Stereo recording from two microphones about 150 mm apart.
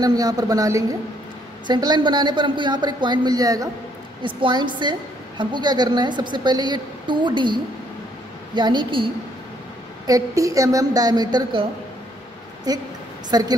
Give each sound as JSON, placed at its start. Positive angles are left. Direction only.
{"t": 0.0, "sound": "a woman's voice", "side_deg": -25}
{"t": 10.0, "sound": "a woman's voice", "side_deg": -20}
{"t": 12.7, "sound": "a woman's voice", "side_deg": -25}